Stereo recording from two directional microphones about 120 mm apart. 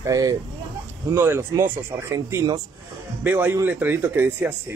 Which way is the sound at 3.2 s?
15° right (ahead or behind).